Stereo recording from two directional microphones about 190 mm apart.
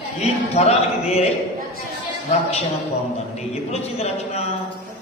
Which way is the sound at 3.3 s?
35° left (ahead or behind).